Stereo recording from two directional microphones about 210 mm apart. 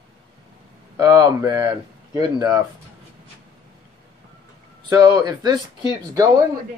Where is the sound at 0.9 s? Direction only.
15° right (ahead or behind).